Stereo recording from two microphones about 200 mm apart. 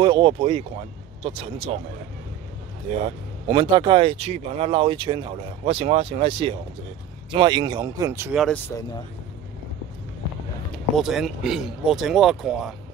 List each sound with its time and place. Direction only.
0.0 s speech: 25° right (ahead or behind)
3.4 s speech: 20° right (ahead or behind)
8.4 s speech: 5° left (ahead or behind)
11.0 s speech: centre (ahead or behind)